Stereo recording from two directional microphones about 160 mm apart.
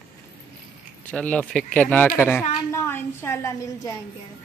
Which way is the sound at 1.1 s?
5° left (ahead or behind).